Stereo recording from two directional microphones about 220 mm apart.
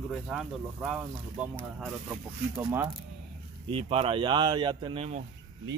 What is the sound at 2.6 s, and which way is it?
Speech, 10° right (ahead or behind).